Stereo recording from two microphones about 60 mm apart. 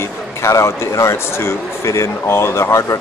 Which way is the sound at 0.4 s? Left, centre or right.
Left.